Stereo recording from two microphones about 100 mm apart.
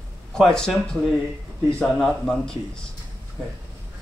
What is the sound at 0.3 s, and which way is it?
Speech, 5° left (ahead or behind).